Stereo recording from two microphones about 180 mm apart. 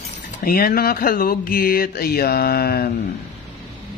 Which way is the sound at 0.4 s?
55° left (ahead or behind).